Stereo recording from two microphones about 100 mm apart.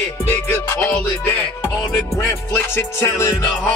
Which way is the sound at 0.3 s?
25° left (ahead or behind).